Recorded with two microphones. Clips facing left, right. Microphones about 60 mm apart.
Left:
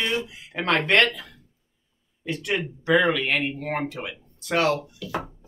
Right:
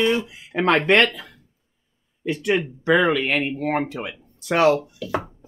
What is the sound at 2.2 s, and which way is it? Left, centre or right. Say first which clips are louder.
Speech: right 5 dB; centre.